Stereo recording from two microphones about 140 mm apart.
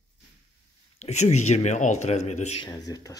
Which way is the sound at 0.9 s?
55° left (ahead or behind).